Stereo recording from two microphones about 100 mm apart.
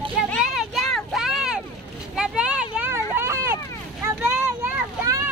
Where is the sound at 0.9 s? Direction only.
Centre (ahead or behind).